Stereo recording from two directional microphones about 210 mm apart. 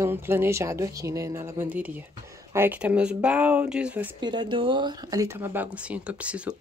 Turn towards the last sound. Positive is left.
turn(degrees=-5)  # may be behind; listen again after turning